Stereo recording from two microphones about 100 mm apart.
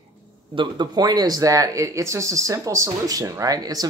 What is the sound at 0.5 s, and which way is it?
Speech, 50° right (ahead or behind).